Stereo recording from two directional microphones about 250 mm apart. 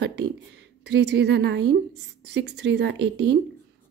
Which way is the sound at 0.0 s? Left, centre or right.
Right.